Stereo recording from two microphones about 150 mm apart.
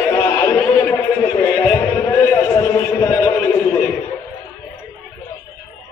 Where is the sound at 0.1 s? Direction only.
20° left (ahead or behind).